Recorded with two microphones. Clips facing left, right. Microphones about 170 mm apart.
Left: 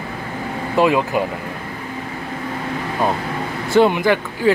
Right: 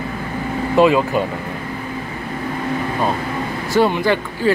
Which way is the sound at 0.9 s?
10° left (ahead or behind).